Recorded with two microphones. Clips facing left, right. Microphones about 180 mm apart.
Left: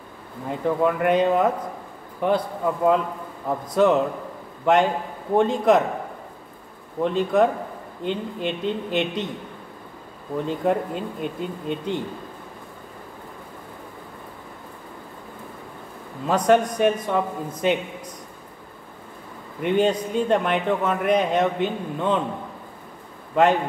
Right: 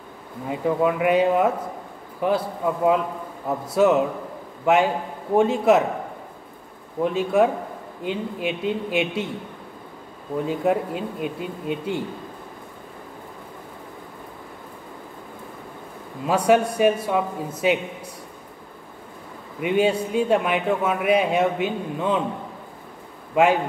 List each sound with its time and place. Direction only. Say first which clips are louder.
0.5 s a man's voice: even; 5° right (ahead or behind)
7.0 s a man's voice: even; 5° right (ahead or behind)
10.4 s a man's voice: right 1 dB; 5° right (ahead or behind)
16.3 s a man's voice: even; 10° right (ahead or behind)
19.6 s a man's voice: even; 10° right (ahead or behind)
23.3 s a man's voice: even; 10° right (ahead or behind)